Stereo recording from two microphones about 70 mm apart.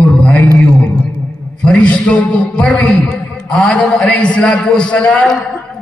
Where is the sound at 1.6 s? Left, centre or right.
Centre.